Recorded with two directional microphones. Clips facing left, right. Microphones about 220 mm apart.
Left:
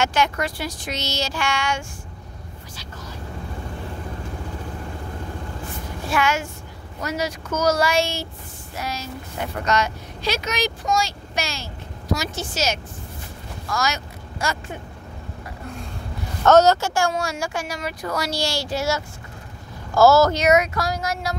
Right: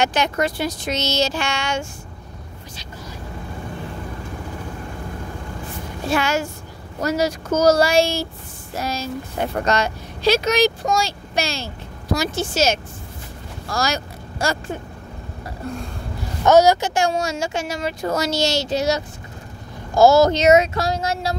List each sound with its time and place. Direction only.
0.0 s speech: 20° right (ahead or behind)
6.0 s speech: 35° right (ahead or behind)
13.7 s vehicle: 35° right (ahead or behind)
16.4 s speech: 10° right (ahead or behind); by 21.4 s 30° right (ahead or behind)